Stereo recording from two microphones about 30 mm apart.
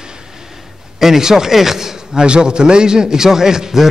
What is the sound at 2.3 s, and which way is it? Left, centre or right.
A man's voice, right.